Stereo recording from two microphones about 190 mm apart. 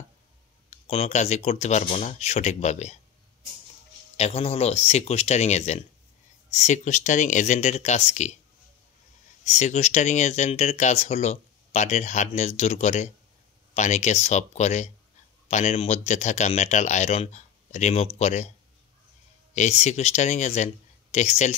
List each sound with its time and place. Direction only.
0.7 s speech: 35° left (ahead or behind)
4.2 s speech: 35° left (ahead or behind)
9.4 s speech: 35° left (ahead or behind)
19.5 s speech: 40° left (ahead or behind)